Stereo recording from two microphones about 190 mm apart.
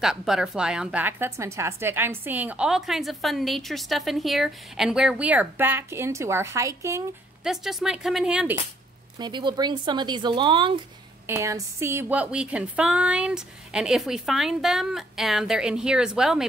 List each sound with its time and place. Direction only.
0.0 s a woman's voice: centre (ahead or behind)
7.4 s speech: 5° right (ahead or behind)
9.2 s speech: 25° right (ahead or behind)
11.2 s speech: 15° right (ahead or behind)